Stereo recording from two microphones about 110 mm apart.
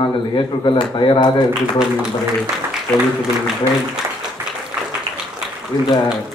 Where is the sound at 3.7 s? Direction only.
25° right (ahead or behind).